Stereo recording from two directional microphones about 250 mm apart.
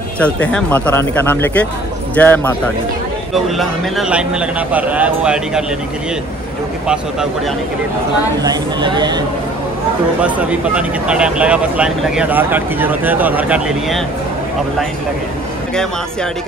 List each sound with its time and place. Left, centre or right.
0.2 s speech: centre
3.4 s speech: centre
8.4 s speech: centre
10.2 s speech: centre